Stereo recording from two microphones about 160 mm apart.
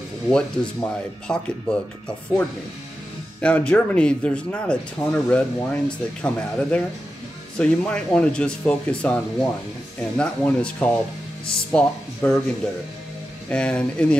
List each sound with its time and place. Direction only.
0.3 s speech: 5° left (ahead or behind)
3.3 s speech: 10° left (ahead or behind)
13.5 s speech: 5° left (ahead or behind)